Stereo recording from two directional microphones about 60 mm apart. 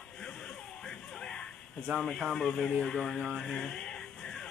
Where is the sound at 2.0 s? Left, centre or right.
Centre.